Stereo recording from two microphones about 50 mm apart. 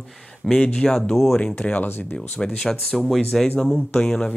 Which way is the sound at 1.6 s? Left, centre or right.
Left.